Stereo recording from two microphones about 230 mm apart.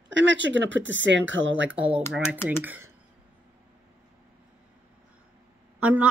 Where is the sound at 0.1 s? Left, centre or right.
Right.